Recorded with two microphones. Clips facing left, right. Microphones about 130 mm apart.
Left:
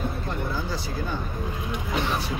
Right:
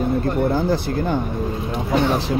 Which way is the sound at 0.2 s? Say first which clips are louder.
Right 11 dB; 55° right (ahead or behind).